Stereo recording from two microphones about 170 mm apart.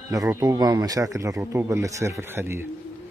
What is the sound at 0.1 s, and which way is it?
A man's voice, 20° right (ahead or behind).